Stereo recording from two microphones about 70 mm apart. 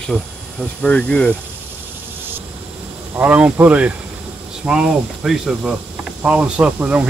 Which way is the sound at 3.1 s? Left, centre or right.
Right.